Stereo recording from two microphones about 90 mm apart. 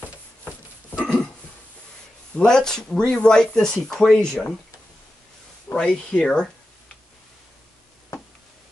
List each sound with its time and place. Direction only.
0.8 s a sound: 20° left (ahead or behind)
2.3 s speech: 5° left (ahead or behind)
5.7 s speech: 10° left (ahead or behind)